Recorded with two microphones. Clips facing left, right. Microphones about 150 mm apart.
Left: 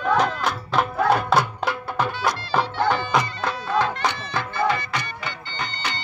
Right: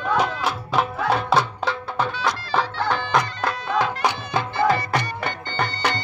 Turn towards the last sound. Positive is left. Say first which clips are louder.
# right 6 dB
turn(degrees=-55)  # may be behind; listen again after turning